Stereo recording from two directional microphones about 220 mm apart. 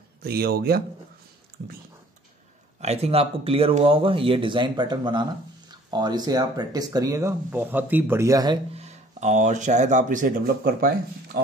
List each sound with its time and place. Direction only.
0.2 s speech: 45° right (ahead or behind)
2.8 s speech: 30° right (ahead or behind)
8.7 s speech: 30° right (ahead or behind); by 11.4 s 45° right (ahead or behind)